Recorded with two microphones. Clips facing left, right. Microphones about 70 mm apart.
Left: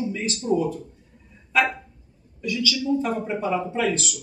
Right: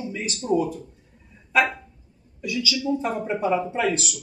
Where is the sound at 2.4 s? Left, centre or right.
Centre.